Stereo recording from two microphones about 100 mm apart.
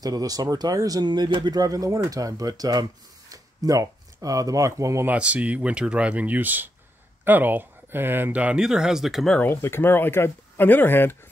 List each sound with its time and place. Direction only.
0.0 s speech: 40° right (ahead or behind)
5.0 s speech: 15° right (ahead or behind)
9.4 s speech: 25° left (ahead or behind)